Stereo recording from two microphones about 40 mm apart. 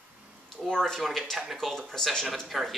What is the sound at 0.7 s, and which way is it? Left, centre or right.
Speech, centre.